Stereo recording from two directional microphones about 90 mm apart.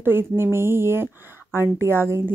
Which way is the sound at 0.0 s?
25° right (ahead or behind).